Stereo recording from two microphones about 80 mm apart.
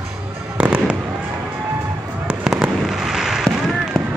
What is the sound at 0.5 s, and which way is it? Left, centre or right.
Fireworks, centre.